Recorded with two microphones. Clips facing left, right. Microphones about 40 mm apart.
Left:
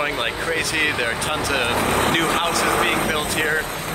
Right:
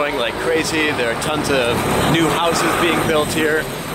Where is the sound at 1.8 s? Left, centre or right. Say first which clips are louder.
Right 2 dB; right.